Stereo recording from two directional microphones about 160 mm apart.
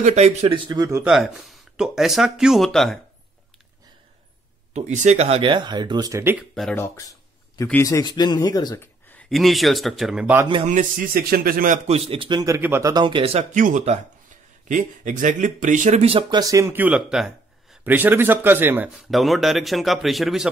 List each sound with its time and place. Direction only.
0.0 s speech: 45° right (ahead or behind)
0.7 s speech: 20° right (ahead or behind)
1.0 s speech: centre (ahead or behind)
4.7 s speech: 45° right (ahead or behind); by 6.3 s 20° right (ahead or behind)
6.5 s speech: 5° left (ahead or behind)
7.6 s speech: 15° left (ahead or behind)
9.3 s speech: centre (ahead or behind)
10.6 s a man's voice: 50° right (ahead or behind)
11.9 s speech: 35° right (ahead or behind); by 12.9 s 15° right (ahead or behind)
12.9 s speech: 30° right (ahead or behind); by 19.0 s 10° right (ahead or behind)
19.0 s speech: centre (ahead or behind)